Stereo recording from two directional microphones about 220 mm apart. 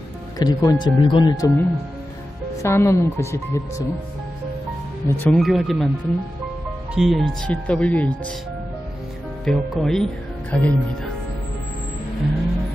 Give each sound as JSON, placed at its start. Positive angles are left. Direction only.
{"t": 0.4, "sound": "speech", "side_deg": 15}
{"t": 5.0, "sound": "speech", "side_deg": 10}
{"t": 9.4, "sound": "speech", "side_deg": 0}